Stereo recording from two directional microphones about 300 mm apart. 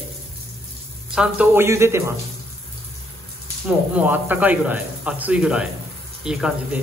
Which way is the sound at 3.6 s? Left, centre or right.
Centre.